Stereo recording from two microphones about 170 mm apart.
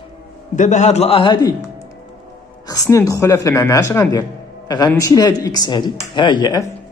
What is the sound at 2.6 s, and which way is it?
Speech, 20° left (ahead or behind).